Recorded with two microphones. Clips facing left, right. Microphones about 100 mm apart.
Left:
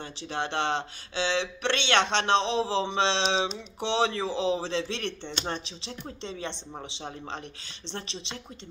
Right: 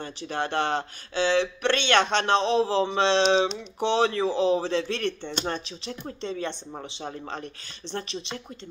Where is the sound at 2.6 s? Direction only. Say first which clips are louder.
Right 3 dB; 45° right (ahead or behind).